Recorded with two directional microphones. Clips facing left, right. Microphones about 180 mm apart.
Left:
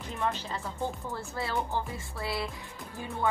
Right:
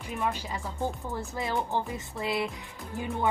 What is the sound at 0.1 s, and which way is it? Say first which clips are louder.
Speech: right 1 dB; 10° right (ahead or behind).